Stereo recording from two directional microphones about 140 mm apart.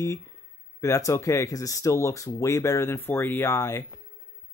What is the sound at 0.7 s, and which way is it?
Speech, 20° left (ahead or behind).